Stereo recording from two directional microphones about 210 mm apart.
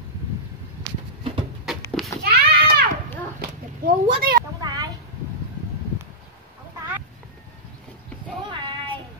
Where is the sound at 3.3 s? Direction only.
45° right (ahead or behind).